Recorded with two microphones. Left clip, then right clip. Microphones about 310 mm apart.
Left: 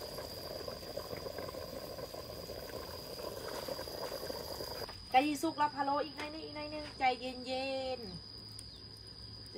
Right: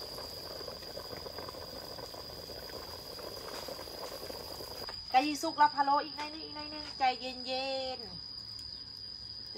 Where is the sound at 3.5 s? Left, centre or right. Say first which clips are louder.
Left 1 dB; centre.